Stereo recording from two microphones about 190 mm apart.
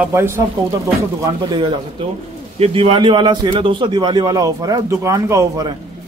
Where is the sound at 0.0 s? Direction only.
15° right (ahead or behind).